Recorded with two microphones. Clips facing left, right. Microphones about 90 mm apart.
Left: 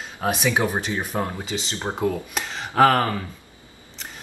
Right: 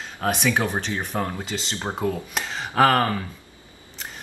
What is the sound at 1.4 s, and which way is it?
Speech, centre (ahead or behind).